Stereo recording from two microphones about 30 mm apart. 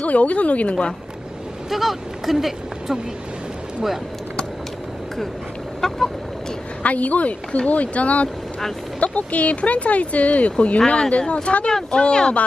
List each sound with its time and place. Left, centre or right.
0.0 s speech: left
1.7 s speech: centre
5.8 s chicken: centre
6.8 s speech: left
12.1 s speech: left